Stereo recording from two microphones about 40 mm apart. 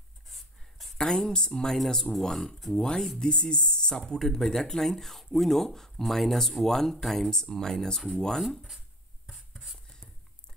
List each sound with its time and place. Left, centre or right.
0.3 s a sound: centre
1.1 s speech: centre
3.9 s speech: centre
8.4 s speech: centre
9.5 s writing: centre